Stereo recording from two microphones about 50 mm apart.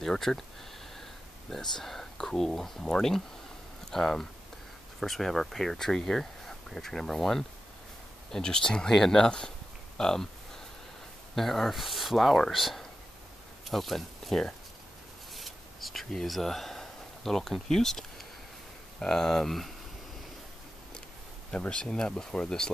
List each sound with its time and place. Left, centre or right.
0.0 s speech: centre
1.5 s speech: centre
11.3 s speech: centre
15.3 s a sound: centre
18.9 s speech: centre
21.5 s speech: centre